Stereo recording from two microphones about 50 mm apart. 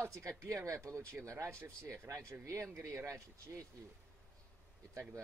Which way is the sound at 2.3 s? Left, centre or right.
Right.